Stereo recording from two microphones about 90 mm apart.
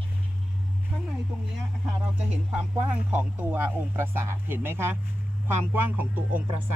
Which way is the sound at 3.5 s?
25° right (ahead or behind).